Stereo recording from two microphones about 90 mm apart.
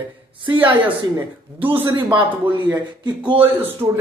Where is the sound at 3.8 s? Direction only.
45° right (ahead or behind).